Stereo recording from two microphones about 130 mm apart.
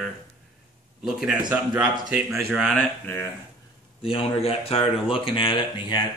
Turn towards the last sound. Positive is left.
turn(degrees=40)  # may be behind; listen again after turning